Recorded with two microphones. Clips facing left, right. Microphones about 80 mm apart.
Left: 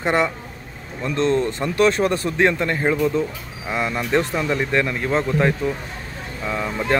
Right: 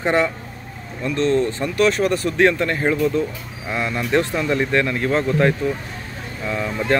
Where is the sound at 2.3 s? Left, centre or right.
Centre.